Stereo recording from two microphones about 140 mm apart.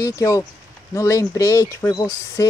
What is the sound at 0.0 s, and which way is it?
Speech, 25° left (ahead or behind).